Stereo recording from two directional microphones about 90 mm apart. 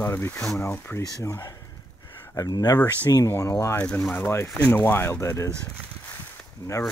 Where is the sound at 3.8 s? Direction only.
15° left (ahead or behind).